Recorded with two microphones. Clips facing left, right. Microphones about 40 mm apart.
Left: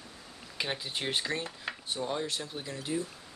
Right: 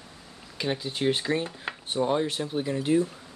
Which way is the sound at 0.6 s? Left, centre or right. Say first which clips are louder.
Right 6 dB; centre.